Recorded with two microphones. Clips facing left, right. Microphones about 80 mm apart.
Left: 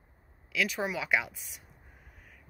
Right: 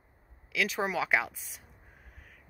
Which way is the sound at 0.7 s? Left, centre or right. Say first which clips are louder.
Right 4 dB; right.